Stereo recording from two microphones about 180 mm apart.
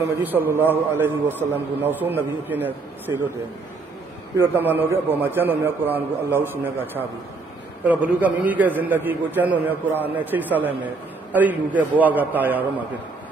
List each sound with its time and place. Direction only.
0.0 s a man's voice: 10° right (ahead or behind)
4.4 s a man's voice: 10° right (ahead or behind)